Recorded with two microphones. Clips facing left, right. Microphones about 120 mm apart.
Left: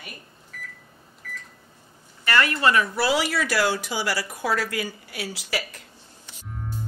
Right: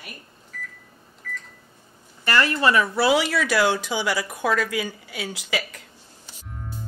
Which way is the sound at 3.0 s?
20° right (ahead or behind).